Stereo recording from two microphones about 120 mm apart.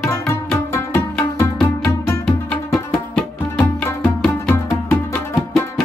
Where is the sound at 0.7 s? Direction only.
20° left (ahead or behind).